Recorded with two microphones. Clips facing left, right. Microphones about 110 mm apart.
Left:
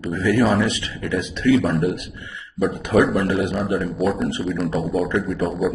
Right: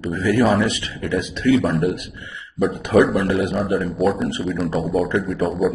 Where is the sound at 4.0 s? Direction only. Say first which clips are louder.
Right 2 dB; centre (ahead or behind).